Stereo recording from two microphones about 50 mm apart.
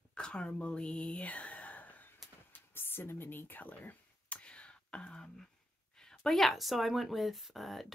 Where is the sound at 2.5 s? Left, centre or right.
Left; by 5.5 s centre.